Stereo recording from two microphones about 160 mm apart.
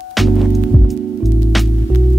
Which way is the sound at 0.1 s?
Centre (ahead or behind).